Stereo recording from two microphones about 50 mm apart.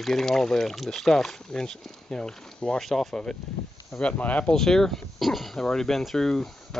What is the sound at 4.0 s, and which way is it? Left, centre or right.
Speech, left.